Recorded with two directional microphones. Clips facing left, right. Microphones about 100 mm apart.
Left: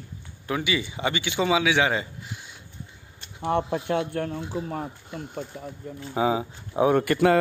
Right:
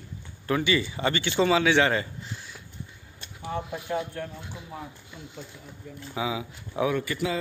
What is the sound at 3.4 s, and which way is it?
Speech, 80° left.